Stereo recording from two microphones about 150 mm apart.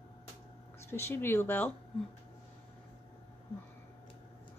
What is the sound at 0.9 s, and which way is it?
Speech, 15° left (ahead or behind).